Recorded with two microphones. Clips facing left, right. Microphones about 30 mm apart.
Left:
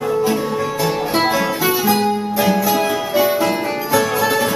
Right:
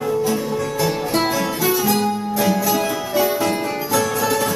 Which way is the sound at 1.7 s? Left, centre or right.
Centre.